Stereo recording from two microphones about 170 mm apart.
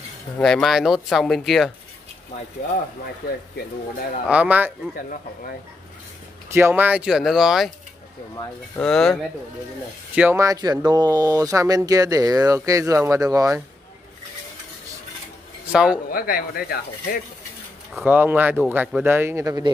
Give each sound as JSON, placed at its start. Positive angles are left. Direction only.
{"t": 0.4, "sound": "speech", "side_deg": 5}
{"t": 4.3, "sound": "speech", "side_deg": -10}
{"t": 6.5, "sound": "speech", "side_deg": -10}
{"t": 8.7, "sound": "speech", "side_deg": 5}
{"t": 10.1, "sound": "speech", "side_deg": -15}
{"t": 15.7, "sound": "speech", "side_deg": -5}
{"t": 16.1, "sound": "speech", "side_deg": 60}
{"t": 17.9, "sound": "speech", "side_deg": -10}